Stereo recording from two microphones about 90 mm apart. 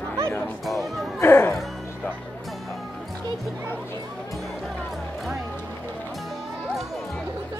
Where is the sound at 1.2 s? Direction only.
25° left (ahead or behind).